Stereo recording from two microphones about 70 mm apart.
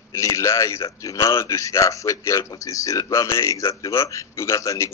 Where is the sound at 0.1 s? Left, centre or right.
Left.